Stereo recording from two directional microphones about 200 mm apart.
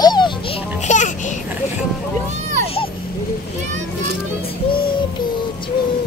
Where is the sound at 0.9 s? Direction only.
40° left (ahead or behind).